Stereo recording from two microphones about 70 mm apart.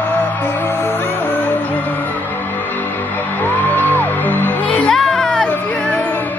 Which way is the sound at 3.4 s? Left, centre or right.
Left.